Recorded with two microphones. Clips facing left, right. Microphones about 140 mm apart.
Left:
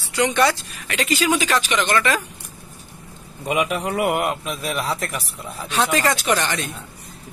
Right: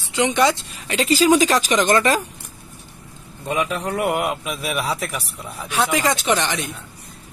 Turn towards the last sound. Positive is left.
turn(degrees=-15)  # may be behind; listen again after turning